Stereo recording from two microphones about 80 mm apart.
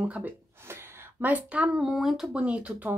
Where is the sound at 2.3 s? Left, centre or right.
Centre.